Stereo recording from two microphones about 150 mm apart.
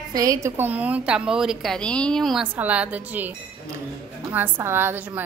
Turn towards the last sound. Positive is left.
turn(degrees=-10)  # may be behind; listen again after turning